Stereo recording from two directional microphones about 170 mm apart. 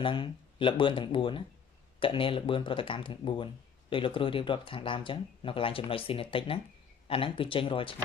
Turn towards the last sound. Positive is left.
turn(degrees=30)  # may be behind; listen again after turning